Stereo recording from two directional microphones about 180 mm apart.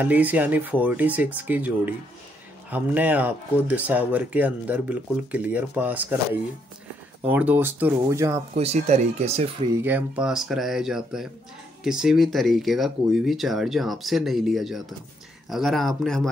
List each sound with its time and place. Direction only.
0.0 s speech: 10° right (ahead or behind)
8.5 s speech: 35° right (ahead or behind)
9.8 s speech: 10° right (ahead or behind)